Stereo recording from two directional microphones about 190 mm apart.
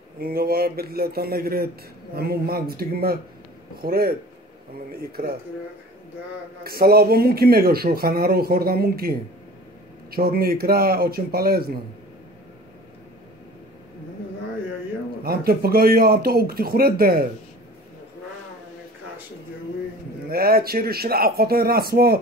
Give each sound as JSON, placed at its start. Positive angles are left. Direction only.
{"t": 0.2, "sound": "speech", "side_deg": -50}
{"t": 6.6, "sound": "speech", "side_deg": -55}
{"t": 15.2, "sound": "speech", "side_deg": -55}
{"t": 20.2, "sound": "speech", "side_deg": -50}